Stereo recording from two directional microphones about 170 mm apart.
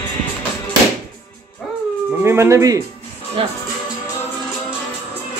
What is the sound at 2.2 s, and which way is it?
Speech, 15° right (ahead or behind).